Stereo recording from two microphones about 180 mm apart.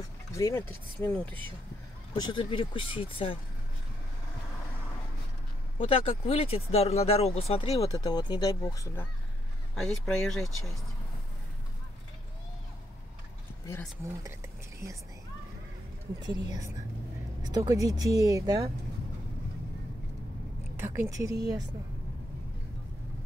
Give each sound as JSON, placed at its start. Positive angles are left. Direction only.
{"t": 0.3, "sound": "speech", "side_deg": 15}
{"t": 2.1, "sound": "speech", "side_deg": 25}
{"t": 5.8, "sound": "speech", "side_deg": 30}
{"t": 7.9, "sound": "speech", "side_deg": 25}
{"t": 9.8, "sound": "speech", "side_deg": 0}
{"t": 16.3, "sound": "speech", "side_deg": -20}
{"t": 20.7, "sound": "a woman's voice", "side_deg": -15}